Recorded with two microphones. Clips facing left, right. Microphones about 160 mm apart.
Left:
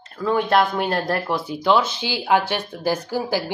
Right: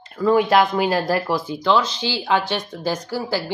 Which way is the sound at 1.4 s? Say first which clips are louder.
Even; 10° left (ahead or behind).